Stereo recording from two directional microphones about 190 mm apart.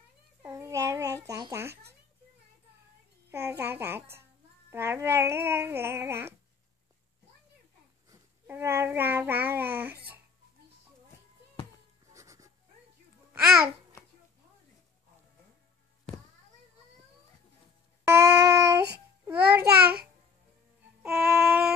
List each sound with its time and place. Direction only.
0.4 s babbling: 15° right (ahead or behind)
1.7 s babbling: 60° right (ahead or behind)
3.3 s babbling: 15° right (ahead or behind)
4.6 s music: 15° right (ahead or behind)
8.1 s babbling: 15° right (ahead or behind)
12.1 s goat: 15° right (ahead or behind)
13.3 s babbling: 5° right (ahead or behind)
18.0 s a sound: 15° right (ahead or behind)
19.7 s a sound: 55° right (ahead or behind)
21.0 s music: 5° right (ahead or behind)